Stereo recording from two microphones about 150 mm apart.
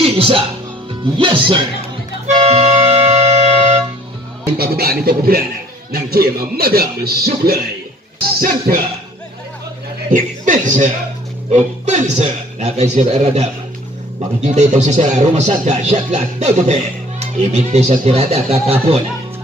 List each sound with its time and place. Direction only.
0.0 s speech: 35° right (ahead or behind)
2.4 s music: 45° right (ahead or behind)
4.6 s speech: 90° right
8.4 s speech: 70° right (ahead or behind)
10.1 s speech: 60° right (ahead or behind); by 18.9 s 45° right (ahead or behind)